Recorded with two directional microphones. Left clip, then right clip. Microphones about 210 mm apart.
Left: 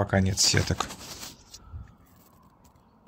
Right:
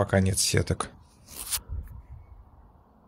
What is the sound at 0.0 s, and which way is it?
Speech, 5° right (ahead or behind).